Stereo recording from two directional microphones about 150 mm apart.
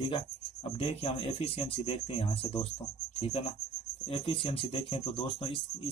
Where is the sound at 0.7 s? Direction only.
40° left (ahead or behind).